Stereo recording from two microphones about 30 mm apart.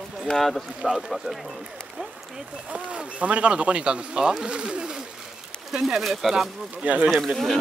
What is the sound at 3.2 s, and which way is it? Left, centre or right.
Speech, right.